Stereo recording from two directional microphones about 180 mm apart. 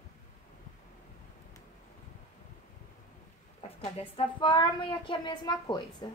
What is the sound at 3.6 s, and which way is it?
Speech, 35° left (ahead or behind).